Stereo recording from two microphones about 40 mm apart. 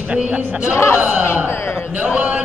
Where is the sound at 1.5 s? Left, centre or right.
Left.